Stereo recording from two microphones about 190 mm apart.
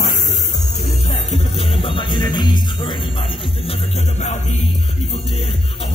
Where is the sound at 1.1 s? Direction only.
35° left (ahead or behind).